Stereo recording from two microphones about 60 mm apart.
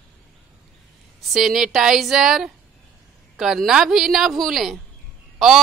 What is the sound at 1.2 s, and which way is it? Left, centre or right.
Speech, centre.